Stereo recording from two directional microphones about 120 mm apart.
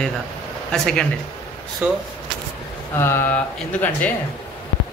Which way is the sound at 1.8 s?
10° right (ahead or behind).